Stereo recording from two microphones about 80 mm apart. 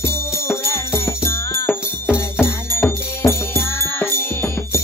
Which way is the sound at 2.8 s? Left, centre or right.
Left.